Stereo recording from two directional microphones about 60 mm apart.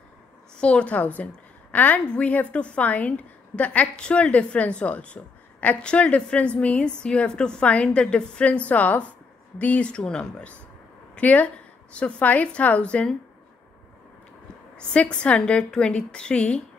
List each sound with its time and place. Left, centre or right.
0.6 s a woman's voice: centre
14.9 s a woman's voice: centre